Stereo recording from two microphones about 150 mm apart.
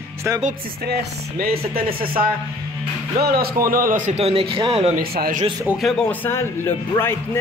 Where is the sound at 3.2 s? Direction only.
90° right; by 4.9 s 35° right (ahead or behind).